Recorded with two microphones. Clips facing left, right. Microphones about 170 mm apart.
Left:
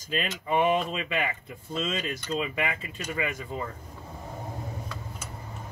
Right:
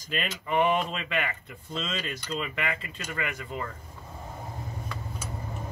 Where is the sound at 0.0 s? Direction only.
10° left (ahead or behind).